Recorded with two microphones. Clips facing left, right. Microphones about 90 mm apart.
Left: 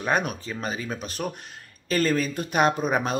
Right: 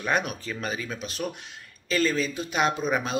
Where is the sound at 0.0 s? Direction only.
40° left (ahead or behind).